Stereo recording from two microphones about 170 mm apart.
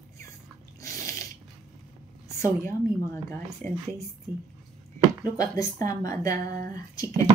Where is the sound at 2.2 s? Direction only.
15° left (ahead or behind).